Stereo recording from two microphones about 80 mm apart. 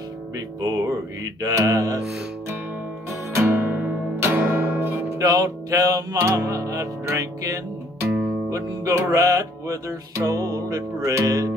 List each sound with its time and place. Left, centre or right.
0.6 s music: right
3.4 s music: right
5.2 s music: right
8.5 s speech: right
9.1 s music: right